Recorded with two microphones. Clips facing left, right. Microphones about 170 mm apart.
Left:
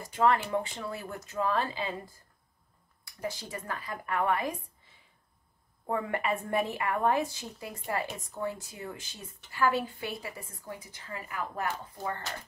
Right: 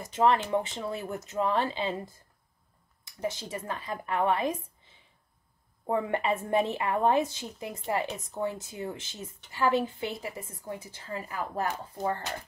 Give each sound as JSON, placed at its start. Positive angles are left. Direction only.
{"t": 0.0, "sound": "a woman's voice", "side_deg": -20}
{"t": 5.9, "sound": "a woman's voice", "side_deg": -25}